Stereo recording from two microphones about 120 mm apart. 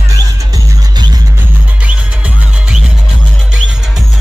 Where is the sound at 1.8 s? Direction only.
10° right (ahead or behind).